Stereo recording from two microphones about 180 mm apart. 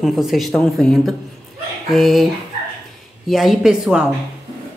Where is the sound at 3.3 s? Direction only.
Centre (ahead or behind).